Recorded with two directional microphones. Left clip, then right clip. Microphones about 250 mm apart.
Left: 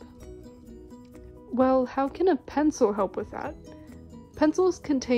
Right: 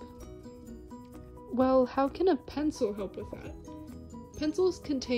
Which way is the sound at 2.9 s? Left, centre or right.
Left.